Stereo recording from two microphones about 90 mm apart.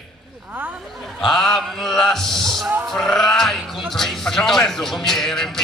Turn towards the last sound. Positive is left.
turn(degrees=5)  # may be behind; listen again after turning